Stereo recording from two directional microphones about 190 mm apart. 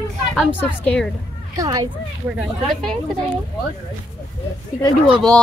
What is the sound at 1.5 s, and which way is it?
Speech, 20° right (ahead or behind).